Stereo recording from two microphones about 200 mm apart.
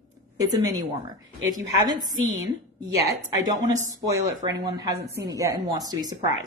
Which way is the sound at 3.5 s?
20° right (ahead or behind).